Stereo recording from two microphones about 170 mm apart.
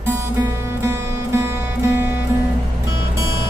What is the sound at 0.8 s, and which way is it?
Music, 15° right (ahead or behind).